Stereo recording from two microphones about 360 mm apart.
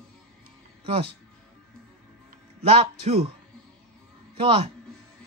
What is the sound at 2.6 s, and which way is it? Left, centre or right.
Speech, centre.